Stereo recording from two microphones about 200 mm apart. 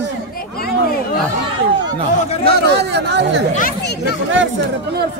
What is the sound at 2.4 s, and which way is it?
Speech, 55° right (ahead or behind).